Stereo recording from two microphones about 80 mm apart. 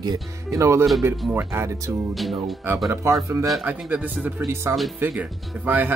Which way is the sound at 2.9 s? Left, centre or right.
Right.